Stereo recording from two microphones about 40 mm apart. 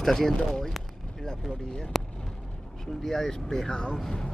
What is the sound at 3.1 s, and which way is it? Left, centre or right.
Speech, centre.